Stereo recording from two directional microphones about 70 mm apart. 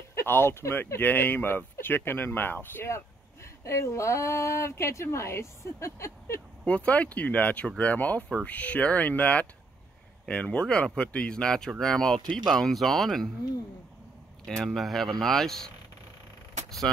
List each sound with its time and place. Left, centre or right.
0.1 s speech: left
3.6 s speech: left
6.6 s speech: centre
14.4 s speech: centre